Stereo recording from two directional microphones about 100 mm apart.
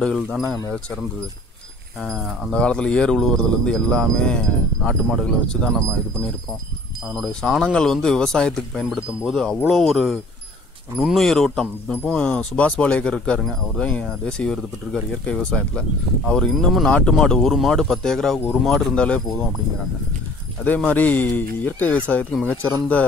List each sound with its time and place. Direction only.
2.5 s speech: 10° left (ahead or behind)
7.2 s speech: 5° left (ahead or behind)
20.6 s speech: 15° left (ahead or behind)